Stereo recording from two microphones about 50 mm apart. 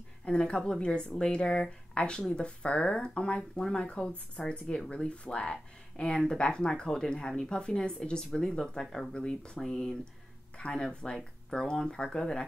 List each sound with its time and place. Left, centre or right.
0.2 s a woman's voice: left